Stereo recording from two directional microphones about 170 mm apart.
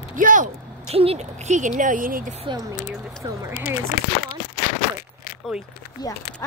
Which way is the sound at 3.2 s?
20° right (ahead or behind).